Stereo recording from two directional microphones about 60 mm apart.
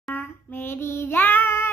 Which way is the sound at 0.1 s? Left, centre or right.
Left.